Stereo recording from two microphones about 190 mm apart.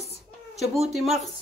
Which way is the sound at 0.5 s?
Centre (ahead or behind).